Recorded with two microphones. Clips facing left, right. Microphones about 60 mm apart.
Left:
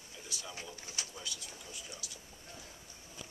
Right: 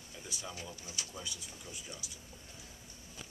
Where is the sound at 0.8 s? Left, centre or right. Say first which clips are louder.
Even; left.